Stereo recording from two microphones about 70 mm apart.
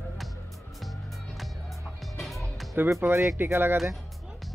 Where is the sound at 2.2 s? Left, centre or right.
Centre.